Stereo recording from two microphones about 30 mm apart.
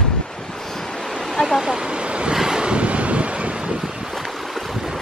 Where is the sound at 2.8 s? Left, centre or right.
Right.